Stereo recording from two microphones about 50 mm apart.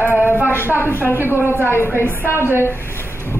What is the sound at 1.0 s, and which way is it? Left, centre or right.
Speech, right.